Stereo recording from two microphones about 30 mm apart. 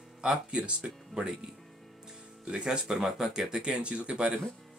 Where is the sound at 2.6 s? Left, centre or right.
Right.